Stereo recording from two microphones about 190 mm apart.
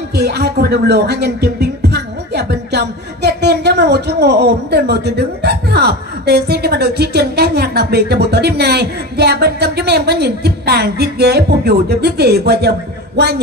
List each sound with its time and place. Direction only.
0.1 s speech: 60° right (ahead or behind)